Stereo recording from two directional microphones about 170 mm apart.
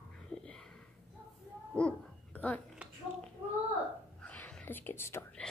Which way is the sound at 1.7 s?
5° left (ahead or behind).